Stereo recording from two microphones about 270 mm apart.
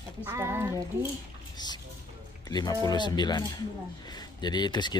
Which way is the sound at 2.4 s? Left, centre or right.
Centre.